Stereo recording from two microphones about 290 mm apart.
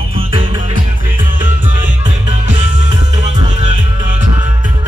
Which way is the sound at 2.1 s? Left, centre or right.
Right.